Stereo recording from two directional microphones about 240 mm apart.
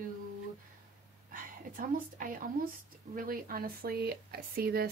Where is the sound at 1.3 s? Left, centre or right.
Right.